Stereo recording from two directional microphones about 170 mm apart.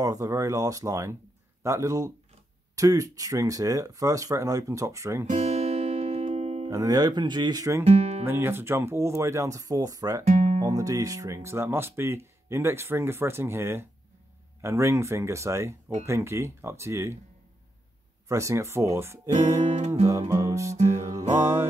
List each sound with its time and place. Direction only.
0.0 s speech: 20° right (ahead or behind)
5.3 s music: 40° right (ahead or behind)
6.7 s speech: 20° right (ahead or behind)
7.8 s speech: 40° right (ahead or behind)
8.3 s speech: 15° right (ahead or behind)
10.2 s music: 45° right (ahead or behind)
10.6 s speech: 20° right (ahead or behind)
18.3 s speech: 15° right (ahead or behind)
19.6 s music: 40° right (ahead or behind)
20.1 s music: 15° right (ahead or behind)